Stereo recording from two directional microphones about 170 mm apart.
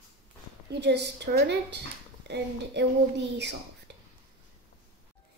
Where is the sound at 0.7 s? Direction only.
85° right.